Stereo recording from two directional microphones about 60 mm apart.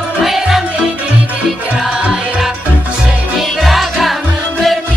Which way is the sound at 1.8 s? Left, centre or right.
Centre.